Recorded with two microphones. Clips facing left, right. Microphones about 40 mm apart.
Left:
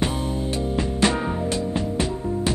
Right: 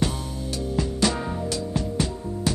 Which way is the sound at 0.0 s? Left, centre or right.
Left.